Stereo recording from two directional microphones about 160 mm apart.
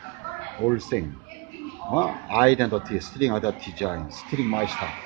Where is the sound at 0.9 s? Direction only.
15° left (ahead or behind).